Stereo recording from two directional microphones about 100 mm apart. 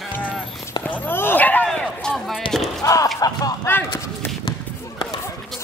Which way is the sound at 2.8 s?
35° left (ahead or behind).